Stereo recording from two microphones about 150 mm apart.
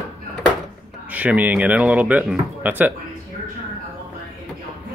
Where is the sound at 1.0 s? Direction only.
10° right (ahead or behind).